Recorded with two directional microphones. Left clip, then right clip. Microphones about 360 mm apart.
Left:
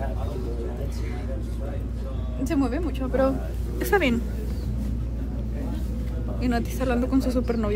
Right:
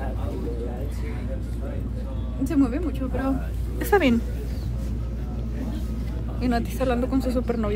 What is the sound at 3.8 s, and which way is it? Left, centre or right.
Speech, centre.